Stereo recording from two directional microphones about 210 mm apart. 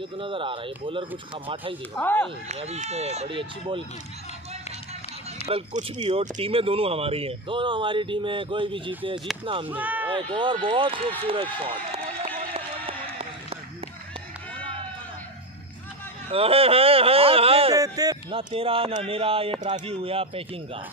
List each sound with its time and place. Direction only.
0.2 s speech: 25° right (ahead or behind)
2.0 s speech: 5° left (ahead or behind)
2.4 s speech: 30° right (ahead or behind)
5.5 s speech: 30° right (ahead or behind)
9.7 s speech: 10° right (ahead or behind)
10.0 s run: 25° right (ahead or behind)
16.3 s speech: 25° right (ahead or behind)
17.7 s speech: 15° right (ahead or behind)